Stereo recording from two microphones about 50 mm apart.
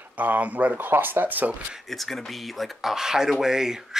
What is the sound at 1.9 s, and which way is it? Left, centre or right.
Speech, centre.